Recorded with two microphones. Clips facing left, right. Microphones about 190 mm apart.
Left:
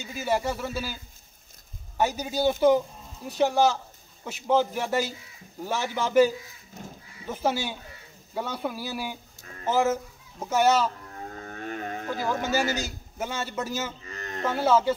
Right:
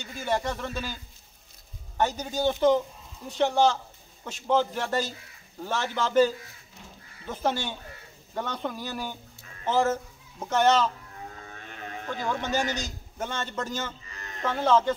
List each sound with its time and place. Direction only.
0.0 s a man's voice: 5° left (ahead or behind)
2.0 s a man's voice: 10° left (ahead or behind)
6.8 s speech: 40° left (ahead or behind)
7.2 s a man's voice: 10° left (ahead or behind)
11.3 s a sound: 45° left (ahead or behind)
12.1 s a man's voice: 5° left (ahead or behind)
14.1 s a sound: 45° left (ahead or behind)
14.4 s a man's voice: 10° left (ahead or behind)